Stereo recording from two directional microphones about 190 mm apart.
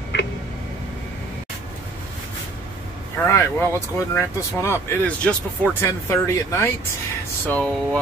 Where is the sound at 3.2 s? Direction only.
15° left (ahead or behind).